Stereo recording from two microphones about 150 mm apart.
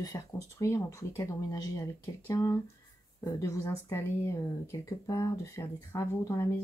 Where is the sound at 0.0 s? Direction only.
20° left (ahead or behind).